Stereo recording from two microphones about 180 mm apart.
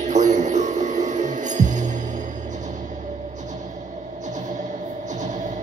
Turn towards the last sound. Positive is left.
turn(degrees=-45)  # may be behind; listen again after turning